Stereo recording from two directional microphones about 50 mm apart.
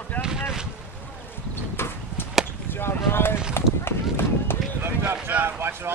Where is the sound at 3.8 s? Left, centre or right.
Left.